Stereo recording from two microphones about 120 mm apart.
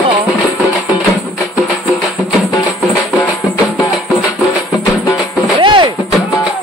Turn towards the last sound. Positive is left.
turn(degrees=-40)  # may be behind; listen again after turning